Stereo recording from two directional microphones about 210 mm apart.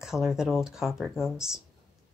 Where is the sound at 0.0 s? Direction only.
Centre (ahead or behind).